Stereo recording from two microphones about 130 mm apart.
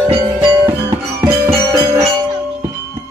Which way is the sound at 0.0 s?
20° right (ahead or behind).